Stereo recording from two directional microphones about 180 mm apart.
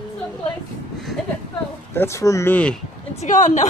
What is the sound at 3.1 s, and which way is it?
Speech, 45° left (ahead or behind).